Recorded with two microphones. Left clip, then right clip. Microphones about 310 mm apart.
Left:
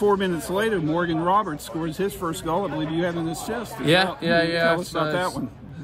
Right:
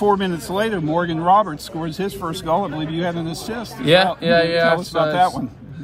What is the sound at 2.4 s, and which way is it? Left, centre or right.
Speech, right.